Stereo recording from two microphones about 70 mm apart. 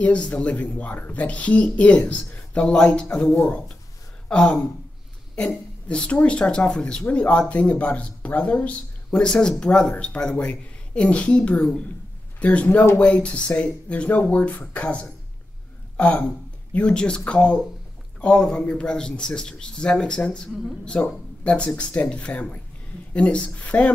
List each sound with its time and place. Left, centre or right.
0.0 s speech: centre
5.9 s speech: centre